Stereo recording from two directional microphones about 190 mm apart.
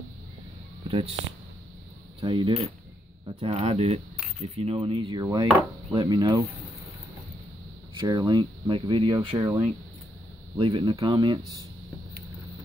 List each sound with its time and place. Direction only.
0.8 s speech: 30° right (ahead or behind)
2.1 s speech: 25° right (ahead or behind)
8.1 s speech: 20° right (ahead or behind)
9.4 s speech: 15° right (ahead or behind)
10.6 s speech: 30° right (ahead or behind)